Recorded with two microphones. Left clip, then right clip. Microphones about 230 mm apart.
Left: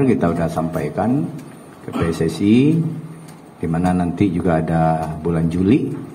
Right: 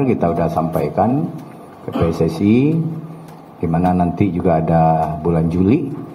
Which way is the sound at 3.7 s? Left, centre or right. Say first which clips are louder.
Right 3 dB; right.